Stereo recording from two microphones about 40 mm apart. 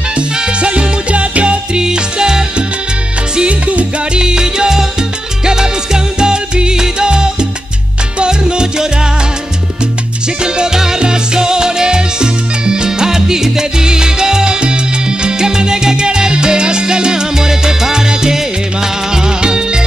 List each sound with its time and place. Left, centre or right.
0.1 s salsa music: right
3.4 s music: right
4.2 s salsa music: centre
5.4 s music: centre
6.1 s salsa music: right
10.4 s music: centre